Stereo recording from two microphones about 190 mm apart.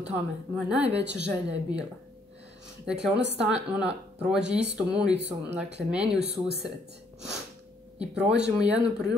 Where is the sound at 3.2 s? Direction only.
65° right (ahead or behind).